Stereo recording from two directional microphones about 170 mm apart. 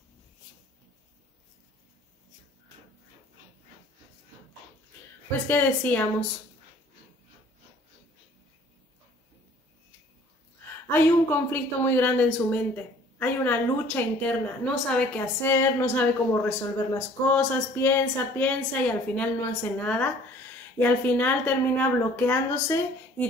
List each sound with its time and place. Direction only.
5.5 s speech: 10° left (ahead or behind)
10.9 s speech: 10° left (ahead or behind)